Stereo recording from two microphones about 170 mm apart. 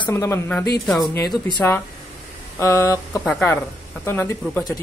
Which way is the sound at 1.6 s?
15° left (ahead or behind).